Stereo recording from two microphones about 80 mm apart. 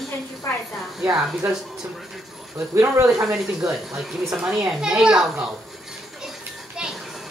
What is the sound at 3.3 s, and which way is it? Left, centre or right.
A woman's voice, centre.